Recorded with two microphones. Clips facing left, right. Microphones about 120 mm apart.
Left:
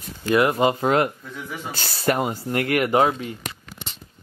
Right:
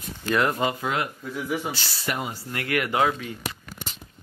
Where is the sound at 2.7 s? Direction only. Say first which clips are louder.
Left 3 dB; 25° left (ahead or behind).